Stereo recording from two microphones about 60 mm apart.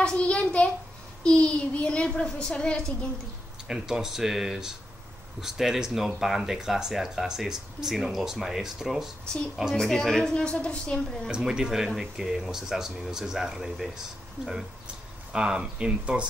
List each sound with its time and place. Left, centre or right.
0.0 s a woman's voice: centre
3.6 s speech: centre
9.8 s a woman's voice: centre
10.3 s a woman's voice: centre
11.2 s speech: centre
15.3 s speech: centre